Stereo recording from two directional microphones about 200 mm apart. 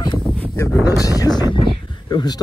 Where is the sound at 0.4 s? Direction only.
15° left (ahead or behind).